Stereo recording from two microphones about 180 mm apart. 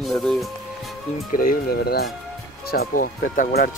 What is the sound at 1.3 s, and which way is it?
Speech, 50° left (ahead or behind).